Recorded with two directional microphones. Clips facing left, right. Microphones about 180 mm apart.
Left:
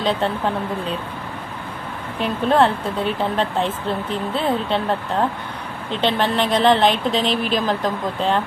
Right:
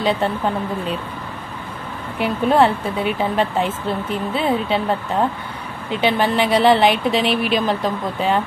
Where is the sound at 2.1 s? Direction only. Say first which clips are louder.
Right 1 dB; 10° right (ahead or behind).